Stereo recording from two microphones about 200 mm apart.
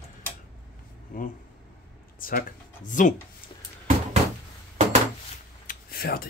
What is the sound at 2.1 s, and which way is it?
Speech, 45° left (ahead or behind).